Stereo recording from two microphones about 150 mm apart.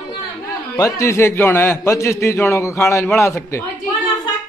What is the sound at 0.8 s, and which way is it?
A man's voice, 20° left (ahead or behind).